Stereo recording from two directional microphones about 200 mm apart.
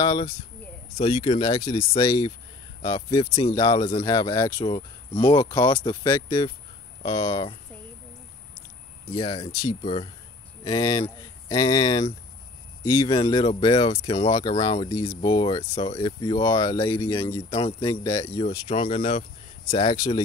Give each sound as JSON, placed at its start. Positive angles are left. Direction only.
{"t": 0.0, "sound": "speech", "side_deg": 20}
{"t": 9.1, "sound": "speech", "side_deg": 25}
{"t": 17.6, "sound": "speech", "side_deg": 25}